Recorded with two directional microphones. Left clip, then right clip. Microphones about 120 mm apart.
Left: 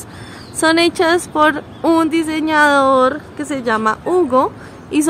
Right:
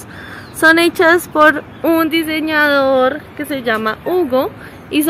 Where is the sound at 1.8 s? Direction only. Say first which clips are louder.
Even; 10° left (ahead or behind); by 3.1 s 30° left (ahead or behind).